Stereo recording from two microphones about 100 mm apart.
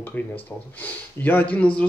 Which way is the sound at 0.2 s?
15° left (ahead or behind).